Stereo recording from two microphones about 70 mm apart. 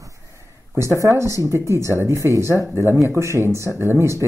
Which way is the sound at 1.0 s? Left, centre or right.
Right.